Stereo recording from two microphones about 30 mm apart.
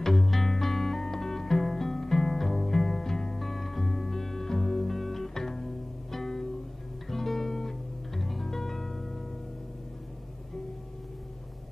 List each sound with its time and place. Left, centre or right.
0.0 s music: centre